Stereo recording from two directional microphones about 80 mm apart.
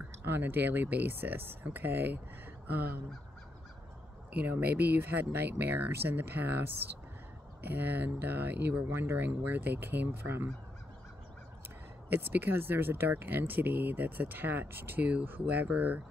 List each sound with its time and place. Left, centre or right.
0.2 s speech: right
4.3 s speech: right
12.1 s speech: right